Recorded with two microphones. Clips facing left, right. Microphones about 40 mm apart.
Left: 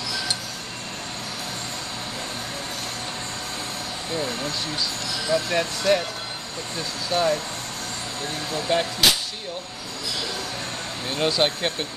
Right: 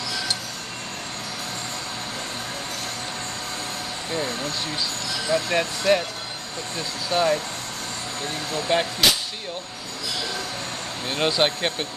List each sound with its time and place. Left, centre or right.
5.3 s speech: centre
7.1 s speech: centre
8.7 s speech: centre
11.1 s speech: centre